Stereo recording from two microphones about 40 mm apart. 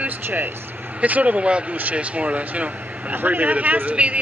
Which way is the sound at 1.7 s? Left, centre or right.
Right.